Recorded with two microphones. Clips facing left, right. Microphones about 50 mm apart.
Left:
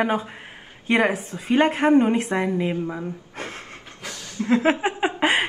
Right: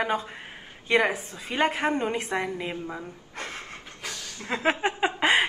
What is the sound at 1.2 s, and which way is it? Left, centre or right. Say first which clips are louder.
Speech: left 6 dB; left.